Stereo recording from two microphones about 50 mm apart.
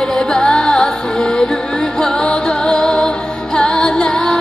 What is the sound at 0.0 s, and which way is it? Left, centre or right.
Music, centre.